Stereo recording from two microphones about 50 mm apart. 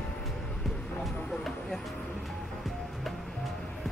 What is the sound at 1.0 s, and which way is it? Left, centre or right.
Vehicle, centre.